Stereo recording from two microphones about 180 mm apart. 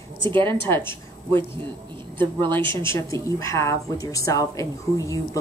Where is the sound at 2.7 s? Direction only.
15° left (ahead or behind).